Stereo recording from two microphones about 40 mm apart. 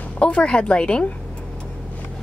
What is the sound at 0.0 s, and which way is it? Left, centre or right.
Speech, left.